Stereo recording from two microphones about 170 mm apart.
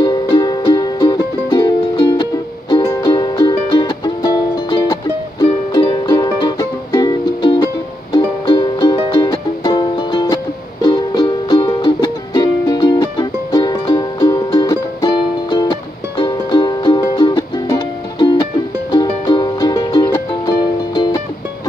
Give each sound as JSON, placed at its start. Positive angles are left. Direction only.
{"t": 0.0, "sound": "music", "side_deg": 25}